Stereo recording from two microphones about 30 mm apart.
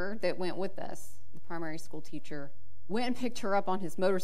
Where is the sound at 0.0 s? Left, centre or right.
Centre.